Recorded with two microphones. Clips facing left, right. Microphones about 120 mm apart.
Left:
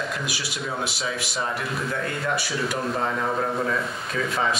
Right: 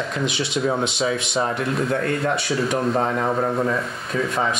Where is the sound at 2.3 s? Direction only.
5° left (ahead or behind).